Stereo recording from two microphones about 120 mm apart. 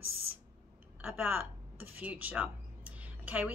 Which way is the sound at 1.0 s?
15° right (ahead or behind).